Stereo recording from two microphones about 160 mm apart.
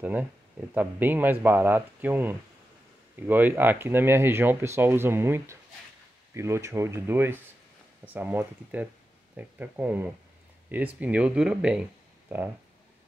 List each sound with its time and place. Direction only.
0.0 s speech: 10° right (ahead or behind)